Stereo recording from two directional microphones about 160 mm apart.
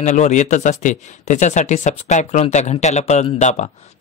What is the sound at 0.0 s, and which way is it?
A man's voice, 45° left (ahead or behind).